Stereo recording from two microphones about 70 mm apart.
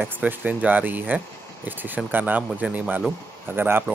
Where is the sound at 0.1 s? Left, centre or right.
Right.